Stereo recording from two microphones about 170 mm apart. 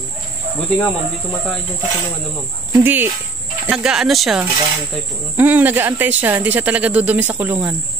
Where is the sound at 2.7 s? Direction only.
10° right (ahead or behind).